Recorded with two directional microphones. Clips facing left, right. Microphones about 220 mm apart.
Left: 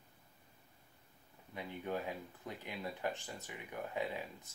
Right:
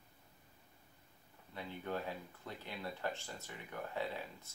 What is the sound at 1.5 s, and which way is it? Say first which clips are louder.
Speech: left 1 dB; 15° left (ahead or behind).